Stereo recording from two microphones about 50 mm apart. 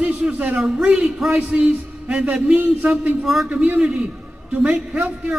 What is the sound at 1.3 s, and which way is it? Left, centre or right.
A man's voice, right.